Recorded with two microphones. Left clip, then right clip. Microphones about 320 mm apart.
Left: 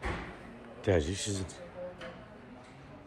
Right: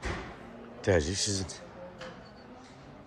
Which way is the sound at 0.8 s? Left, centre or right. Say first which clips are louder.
Right 3 dB; centre.